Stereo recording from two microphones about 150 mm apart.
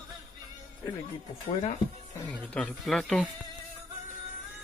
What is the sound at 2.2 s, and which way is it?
Speech, 5° left (ahead or behind).